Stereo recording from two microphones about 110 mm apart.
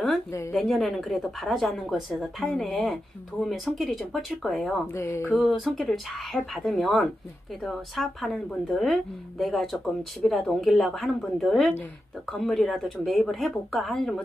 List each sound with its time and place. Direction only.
0.5 s speech: centre (ahead or behind)
4.9 s speech: 25° left (ahead or behind)
5.3 s speech: centre (ahead or behind)